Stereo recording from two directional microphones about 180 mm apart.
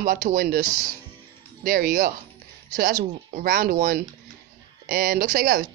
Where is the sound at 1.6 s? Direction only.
55° right (ahead or behind).